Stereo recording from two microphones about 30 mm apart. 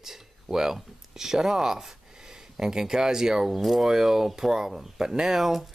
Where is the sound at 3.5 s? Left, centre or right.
Centre.